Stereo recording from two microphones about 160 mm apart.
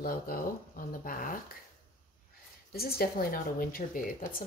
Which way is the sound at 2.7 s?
75° left (ahead or behind).